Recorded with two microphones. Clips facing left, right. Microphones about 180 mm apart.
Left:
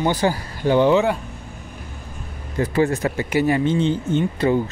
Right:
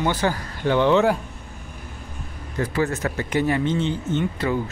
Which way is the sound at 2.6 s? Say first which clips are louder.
Left 4 dB; 25° left (ahead or behind).